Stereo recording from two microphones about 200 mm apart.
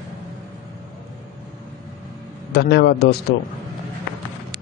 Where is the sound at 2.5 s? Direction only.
55° left (ahead or behind).